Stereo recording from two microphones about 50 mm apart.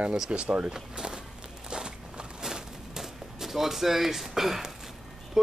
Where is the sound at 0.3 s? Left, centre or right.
Right.